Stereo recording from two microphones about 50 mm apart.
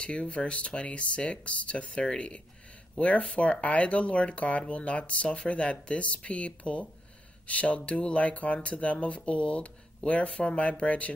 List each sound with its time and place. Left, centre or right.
0.0 s speech: left